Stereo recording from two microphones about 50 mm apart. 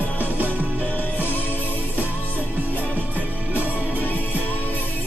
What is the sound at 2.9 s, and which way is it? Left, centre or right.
Music, right.